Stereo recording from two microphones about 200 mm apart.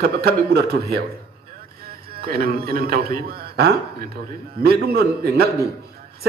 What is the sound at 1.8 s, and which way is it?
A man's voice, 50° right (ahead or behind).